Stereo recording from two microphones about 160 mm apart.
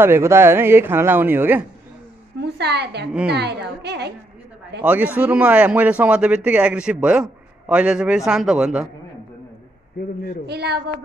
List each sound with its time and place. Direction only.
0.0 s a man's voice: 15° right (ahead or behind)
2.4 s a woman's voice: 90° right
4.8 s a man's voice: 10° right (ahead or behind)
10.4 s a woman's voice: 90° right